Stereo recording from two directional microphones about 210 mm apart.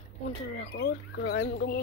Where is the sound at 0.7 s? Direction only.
45° left (ahead or behind).